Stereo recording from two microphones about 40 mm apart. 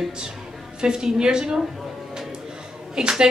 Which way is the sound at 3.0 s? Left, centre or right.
Centre.